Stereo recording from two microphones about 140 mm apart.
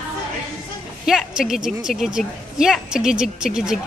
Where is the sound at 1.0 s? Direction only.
5° right (ahead or behind).